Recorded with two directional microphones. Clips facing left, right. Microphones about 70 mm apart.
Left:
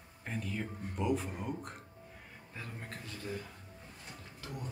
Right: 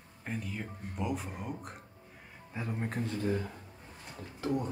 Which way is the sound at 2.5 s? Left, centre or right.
Right.